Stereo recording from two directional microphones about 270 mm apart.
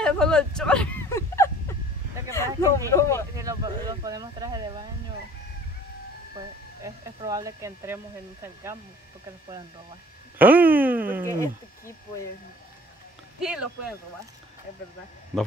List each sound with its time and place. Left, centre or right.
0.0 s a sound: centre
2.3 s speech: centre
3.3 s speech: centre
6.3 s speech: centre
10.4 s speech: centre
11.3 s speech: centre
13.4 s speech: centre